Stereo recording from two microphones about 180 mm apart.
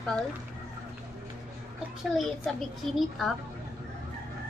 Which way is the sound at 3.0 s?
Centre (ahead or behind).